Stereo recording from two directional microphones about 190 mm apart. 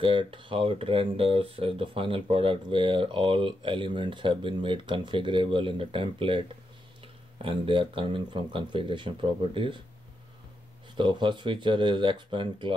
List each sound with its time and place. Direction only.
0.0 s speech: 25° right (ahead or behind)
7.4 s speech: 30° right (ahead or behind)
11.0 s speech: 25° right (ahead or behind)